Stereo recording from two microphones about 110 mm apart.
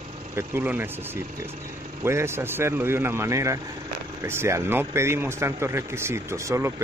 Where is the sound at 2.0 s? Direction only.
25° right (ahead or behind).